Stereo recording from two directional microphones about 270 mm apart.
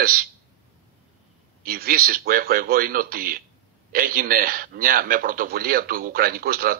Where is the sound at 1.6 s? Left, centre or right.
Right.